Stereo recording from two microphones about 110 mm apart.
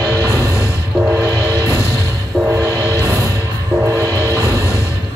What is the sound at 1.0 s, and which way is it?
Train, 25° right (ahead or behind).